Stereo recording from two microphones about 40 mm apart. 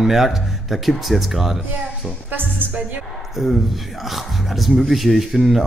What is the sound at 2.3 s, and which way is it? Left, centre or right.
Speech, right.